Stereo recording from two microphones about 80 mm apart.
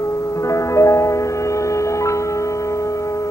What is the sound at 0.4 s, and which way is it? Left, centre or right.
Music, left.